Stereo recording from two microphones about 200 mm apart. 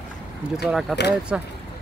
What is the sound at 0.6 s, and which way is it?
Speech, centre (ahead or behind).